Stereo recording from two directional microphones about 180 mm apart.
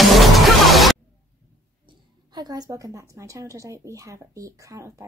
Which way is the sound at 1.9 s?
20° right (ahead or behind).